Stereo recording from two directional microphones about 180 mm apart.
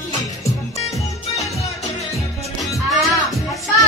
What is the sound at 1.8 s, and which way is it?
Music, 35° left (ahead or behind).